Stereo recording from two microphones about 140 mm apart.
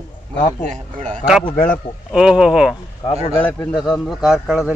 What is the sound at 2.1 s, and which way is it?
Speech, 5° right (ahead or behind).